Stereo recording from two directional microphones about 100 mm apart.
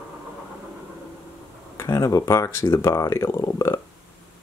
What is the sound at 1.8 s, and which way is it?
Speech, 35° left (ahead or behind).